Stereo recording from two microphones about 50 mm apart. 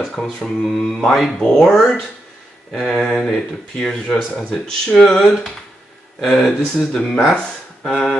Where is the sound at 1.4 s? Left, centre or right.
Centre.